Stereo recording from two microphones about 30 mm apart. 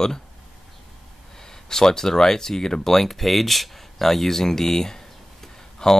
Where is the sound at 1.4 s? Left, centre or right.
Centre.